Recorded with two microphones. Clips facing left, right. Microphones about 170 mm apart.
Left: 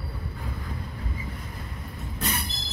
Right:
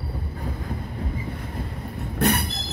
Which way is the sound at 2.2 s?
65° right (ahead or behind).